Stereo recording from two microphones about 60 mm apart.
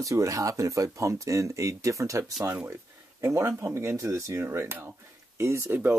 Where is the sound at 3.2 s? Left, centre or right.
Right.